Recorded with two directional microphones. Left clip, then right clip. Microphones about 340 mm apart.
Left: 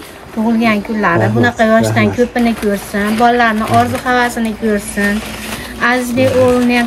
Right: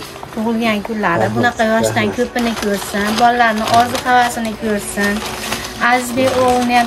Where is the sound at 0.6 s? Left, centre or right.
Centre.